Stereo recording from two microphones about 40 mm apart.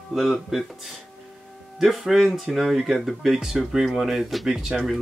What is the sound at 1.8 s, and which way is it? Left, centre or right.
Speech, centre.